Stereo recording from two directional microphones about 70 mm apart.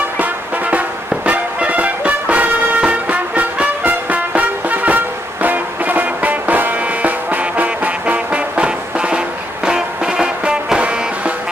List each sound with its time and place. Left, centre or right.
0.2 s music: right